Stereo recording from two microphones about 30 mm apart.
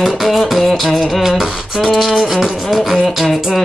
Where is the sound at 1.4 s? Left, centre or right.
Centre.